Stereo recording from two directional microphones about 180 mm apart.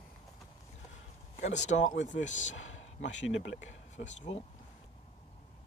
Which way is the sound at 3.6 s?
40° left (ahead or behind).